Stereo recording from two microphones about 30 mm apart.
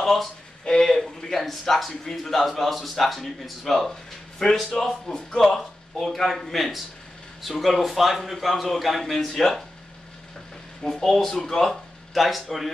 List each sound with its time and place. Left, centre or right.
0.0 s speech: centre
0.7 s speech: centre
2.4 s a man's voice: centre; by 5.4 s left
5.5 s a man's voice: centre
10.8 s speech: centre
12.1 s a man's voice: centre